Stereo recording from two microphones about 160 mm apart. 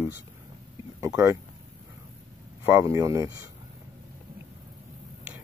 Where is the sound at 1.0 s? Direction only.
20° right (ahead or behind).